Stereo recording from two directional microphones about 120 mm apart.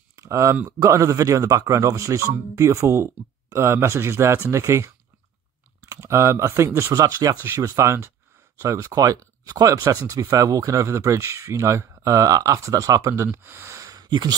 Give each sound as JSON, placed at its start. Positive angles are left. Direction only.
{"t": 0.1, "sound": "a sound", "side_deg": -25}
{"t": 0.7, "sound": "speech", "side_deg": -25}
{"t": 14.0, "sound": "speech", "side_deg": -35}